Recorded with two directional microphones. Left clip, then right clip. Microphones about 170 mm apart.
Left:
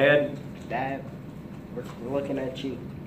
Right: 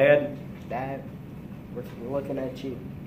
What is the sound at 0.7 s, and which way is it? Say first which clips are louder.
Speech: left 2 dB; 30° right (ahead or behind).